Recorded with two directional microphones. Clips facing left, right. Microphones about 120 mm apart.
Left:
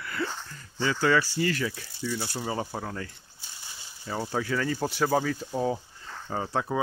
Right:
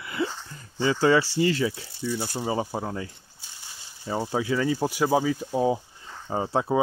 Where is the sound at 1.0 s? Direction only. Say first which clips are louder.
Right 4 dB; 25° right (ahead or behind).